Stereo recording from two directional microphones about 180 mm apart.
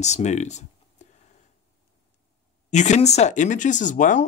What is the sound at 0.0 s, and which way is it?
Speech, 40° left (ahead or behind).